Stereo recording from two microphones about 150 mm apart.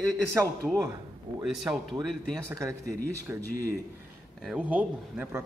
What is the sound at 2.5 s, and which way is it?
Speech, 20° right (ahead or behind).